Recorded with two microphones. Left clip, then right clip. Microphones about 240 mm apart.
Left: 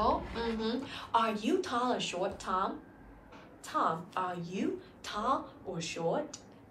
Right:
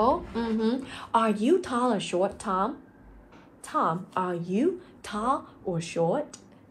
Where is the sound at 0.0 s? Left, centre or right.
Right.